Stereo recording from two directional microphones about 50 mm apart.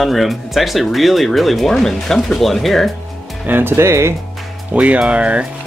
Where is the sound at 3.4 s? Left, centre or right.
Right.